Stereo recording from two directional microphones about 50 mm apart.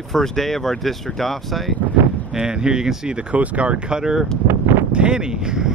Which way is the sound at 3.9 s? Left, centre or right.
Centre.